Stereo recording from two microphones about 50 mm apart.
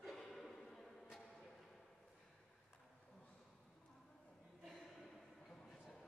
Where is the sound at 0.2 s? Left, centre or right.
Centre.